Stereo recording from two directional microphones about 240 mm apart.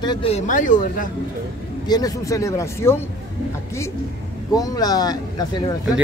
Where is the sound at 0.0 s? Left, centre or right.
Left.